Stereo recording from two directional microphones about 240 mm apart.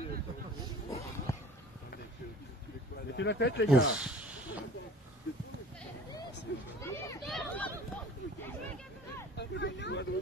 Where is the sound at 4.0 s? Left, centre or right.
Centre.